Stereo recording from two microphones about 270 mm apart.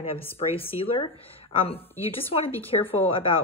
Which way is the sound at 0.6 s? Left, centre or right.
Centre.